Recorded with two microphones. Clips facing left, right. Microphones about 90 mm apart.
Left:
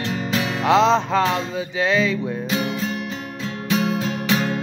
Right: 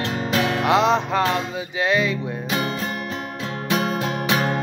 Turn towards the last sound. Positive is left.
turn(degrees=-55)  # may be behind; listen again after turning